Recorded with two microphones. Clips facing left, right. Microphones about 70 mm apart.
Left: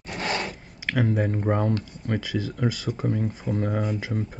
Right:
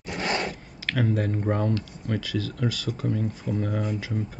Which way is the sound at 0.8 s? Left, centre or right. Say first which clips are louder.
Left 2 dB; centre.